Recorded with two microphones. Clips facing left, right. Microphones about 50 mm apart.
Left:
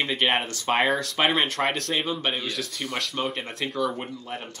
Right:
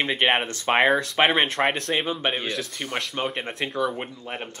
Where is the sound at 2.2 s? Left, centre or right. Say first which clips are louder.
Right 2 dB; right.